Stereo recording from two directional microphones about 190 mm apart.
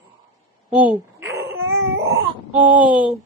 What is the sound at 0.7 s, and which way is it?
Baby cry, 10° right (ahead or behind).